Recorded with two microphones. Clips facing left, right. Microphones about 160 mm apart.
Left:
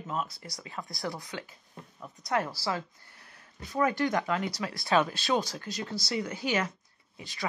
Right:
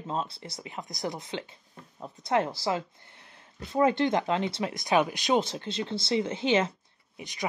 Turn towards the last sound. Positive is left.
turn(degrees=-20)  # may be behind; listen again after turning